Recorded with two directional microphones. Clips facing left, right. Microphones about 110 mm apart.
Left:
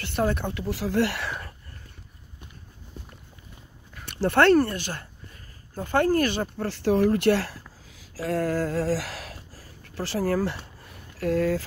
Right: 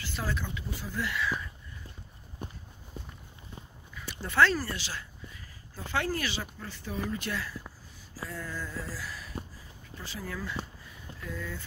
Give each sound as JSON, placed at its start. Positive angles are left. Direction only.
{"t": 0.0, "sound": "speech", "side_deg": 60}
{"t": 3.9, "sound": "speech", "side_deg": 65}
{"t": 6.7, "sound": "speech", "side_deg": 75}
{"t": 8.1, "sound": "a sound", "side_deg": 90}